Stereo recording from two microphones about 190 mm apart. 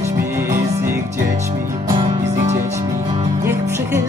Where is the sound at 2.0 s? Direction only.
35° right (ahead or behind).